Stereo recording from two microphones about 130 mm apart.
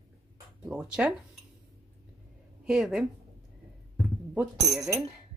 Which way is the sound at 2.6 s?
5° right (ahead or behind).